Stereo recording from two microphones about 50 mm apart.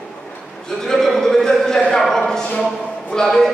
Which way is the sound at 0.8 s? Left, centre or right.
Centre.